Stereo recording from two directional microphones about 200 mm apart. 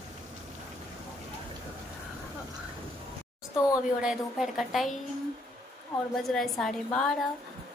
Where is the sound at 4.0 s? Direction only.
5° right (ahead or behind).